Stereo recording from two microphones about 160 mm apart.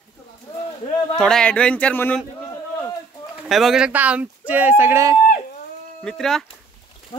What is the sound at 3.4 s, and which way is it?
Speech, centre (ahead or behind).